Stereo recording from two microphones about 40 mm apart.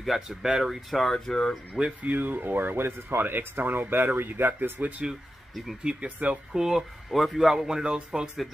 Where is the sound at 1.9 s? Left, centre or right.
Right.